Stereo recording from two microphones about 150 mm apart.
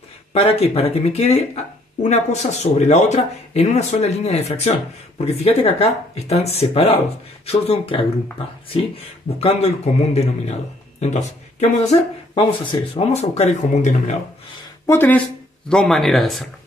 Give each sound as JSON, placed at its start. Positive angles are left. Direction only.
{"t": 0.3, "sound": "speech", "side_deg": 40}
{"t": 12.6, "sound": "speech", "side_deg": 35}
{"t": 14.9, "sound": "speech", "side_deg": 10}